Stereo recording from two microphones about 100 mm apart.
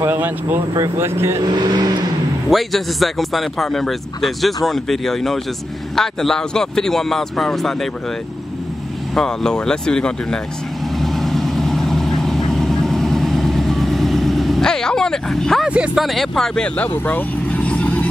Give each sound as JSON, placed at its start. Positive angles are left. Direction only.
{"t": 0.0, "sound": "speech", "side_deg": -20}
{"t": 1.4, "sound": "speech", "side_deg": -45}
{"t": 2.5, "sound": "speech", "side_deg": 0}
{"t": 9.1, "sound": "speech", "side_deg": 5}
{"t": 11.0, "sound": "vehicle", "side_deg": 0}
{"t": 15.6, "sound": "speech", "side_deg": -10}